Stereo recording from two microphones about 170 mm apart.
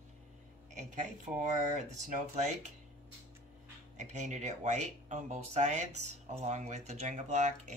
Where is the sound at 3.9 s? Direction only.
45° right (ahead or behind).